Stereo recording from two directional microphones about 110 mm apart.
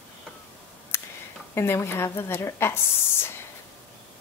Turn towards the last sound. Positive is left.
turn(degrees=20)  # may be behind; listen again after turning